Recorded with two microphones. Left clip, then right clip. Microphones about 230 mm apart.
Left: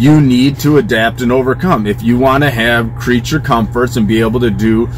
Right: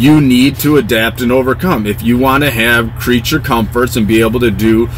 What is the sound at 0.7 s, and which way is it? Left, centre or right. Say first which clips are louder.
Speech: left 2 dB; right.